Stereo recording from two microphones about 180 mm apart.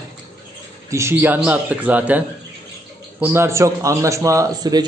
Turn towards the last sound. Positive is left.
turn(degrees=-20)  # may be behind; listen again after turning